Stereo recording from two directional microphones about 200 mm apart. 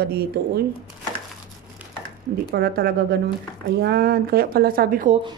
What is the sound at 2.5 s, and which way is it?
Speech, 55° right (ahead or behind).